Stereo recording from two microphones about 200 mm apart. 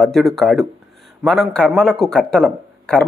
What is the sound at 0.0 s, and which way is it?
Speech, centre (ahead or behind).